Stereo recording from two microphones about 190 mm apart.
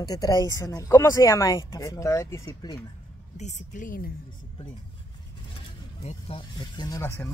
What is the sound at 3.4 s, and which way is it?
Speech, 45° left (ahead or behind).